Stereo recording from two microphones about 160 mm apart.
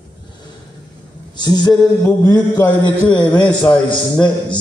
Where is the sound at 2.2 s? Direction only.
25° left (ahead or behind).